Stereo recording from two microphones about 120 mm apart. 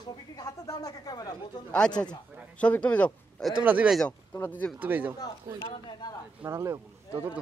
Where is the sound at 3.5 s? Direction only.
10° right (ahead or behind).